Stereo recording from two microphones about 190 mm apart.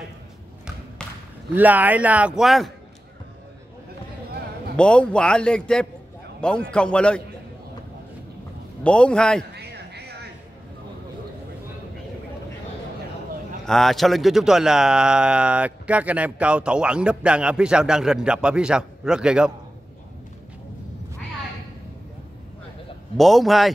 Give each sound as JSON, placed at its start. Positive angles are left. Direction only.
{"t": 1.5, "sound": "a man's voice", "side_deg": -10}
{"t": 4.7, "sound": "a man's voice", "side_deg": 5}
{"t": 8.8, "sound": "a man's voice", "side_deg": 5}
{"t": 9.5, "sound": "a sound", "side_deg": -60}
{"t": 13.7, "sound": "a man's voice", "side_deg": 0}
{"t": 23.1, "sound": "a man's voice", "side_deg": 0}